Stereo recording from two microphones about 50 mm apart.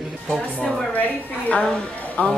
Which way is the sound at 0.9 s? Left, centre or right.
Left.